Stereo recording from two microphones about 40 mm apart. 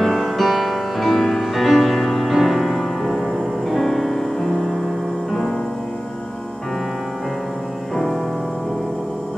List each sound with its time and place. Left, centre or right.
0.0 s music: centre
7.9 s music: centre